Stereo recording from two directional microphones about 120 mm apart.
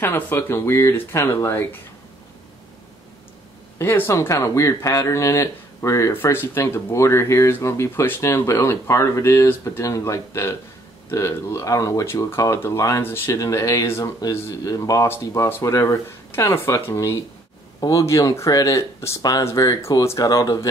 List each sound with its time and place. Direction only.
0.0 s speech: 20° left (ahead or behind)
3.7 s speech: 20° left (ahead or behind)